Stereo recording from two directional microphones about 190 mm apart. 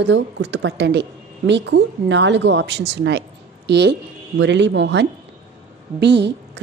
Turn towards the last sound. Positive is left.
turn(degrees=-65)  # may be behind; listen again after turning